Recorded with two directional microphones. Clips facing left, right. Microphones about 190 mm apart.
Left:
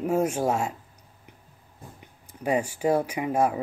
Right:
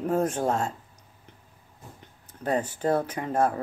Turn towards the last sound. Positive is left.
turn(degrees=10)  # may be behind; listen again after turning